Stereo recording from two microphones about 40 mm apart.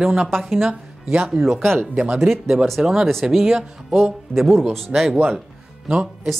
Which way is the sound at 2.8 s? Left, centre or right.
Centre.